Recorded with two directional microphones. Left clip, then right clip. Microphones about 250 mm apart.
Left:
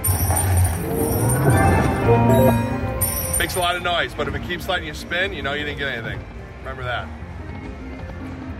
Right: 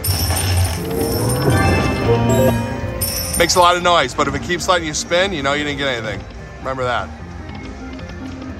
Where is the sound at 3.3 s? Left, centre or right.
Right.